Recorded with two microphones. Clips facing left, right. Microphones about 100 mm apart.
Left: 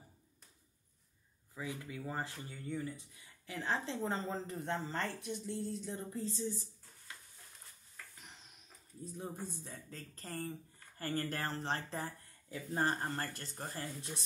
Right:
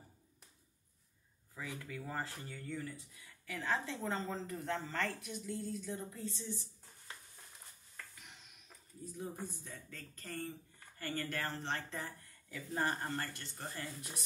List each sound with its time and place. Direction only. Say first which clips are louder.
1.5 s speech: left 2 dB; 20° left (ahead or behind); by 6.7 s 35° left (ahead or behind)
9.0 s speech: even; 30° left (ahead or behind)